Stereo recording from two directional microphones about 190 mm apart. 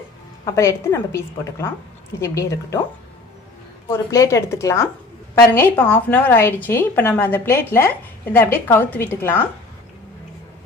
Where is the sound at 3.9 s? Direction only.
15° left (ahead or behind).